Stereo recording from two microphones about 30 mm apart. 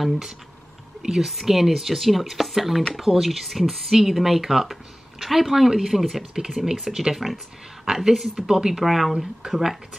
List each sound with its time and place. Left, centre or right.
1.0 s a woman's voice: centre
8.1 s speech: centre
8.8 s speech: centre